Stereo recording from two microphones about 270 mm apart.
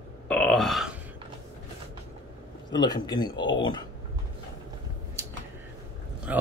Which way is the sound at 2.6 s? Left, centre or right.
Centre.